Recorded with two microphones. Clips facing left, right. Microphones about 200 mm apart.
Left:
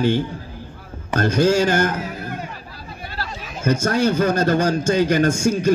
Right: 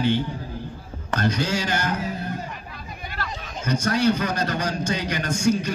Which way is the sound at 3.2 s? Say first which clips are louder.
Left 2 dB; 35° left (ahead or behind).